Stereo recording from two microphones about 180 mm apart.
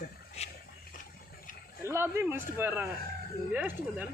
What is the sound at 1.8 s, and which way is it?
A man's voice, 15° right (ahead or behind).